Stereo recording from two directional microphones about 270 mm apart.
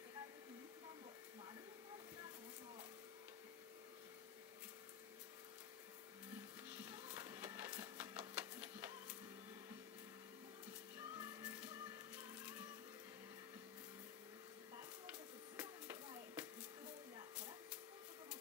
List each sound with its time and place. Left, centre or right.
6.7 s music: centre
7.0 s printer: centre
11.0 s music: centre
15.5 s a sound: centre